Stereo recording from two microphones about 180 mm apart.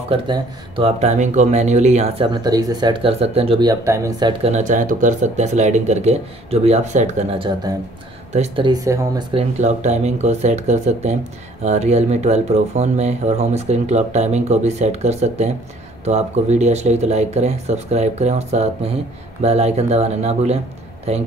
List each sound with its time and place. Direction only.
0.1 s speech: 30° right (ahead or behind)
3.8 s speech: 15° right (ahead or behind)
4.3 s speech: 35° right (ahead or behind)
8.6 s speech: 20° right (ahead or behind)
9.3 s speech: 35° right (ahead or behind)